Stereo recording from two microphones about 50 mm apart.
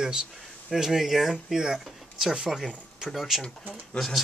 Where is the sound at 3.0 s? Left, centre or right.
Centre.